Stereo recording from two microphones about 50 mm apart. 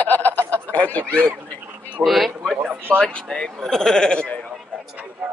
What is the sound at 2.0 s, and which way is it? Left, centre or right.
Speech, centre.